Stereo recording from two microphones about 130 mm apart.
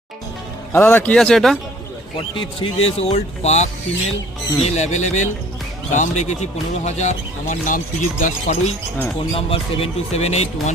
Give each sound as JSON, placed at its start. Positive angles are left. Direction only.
{"t": 0.7, "sound": "speech", "side_deg": 15}
{"t": 2.1, "sound": "speech", "side_deg": 40}
{"t": 9.3, "sound": "speech", "side_deg": 50}